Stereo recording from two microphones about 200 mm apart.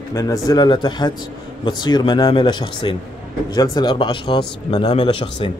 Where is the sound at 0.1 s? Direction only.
15° left (ahead or behind).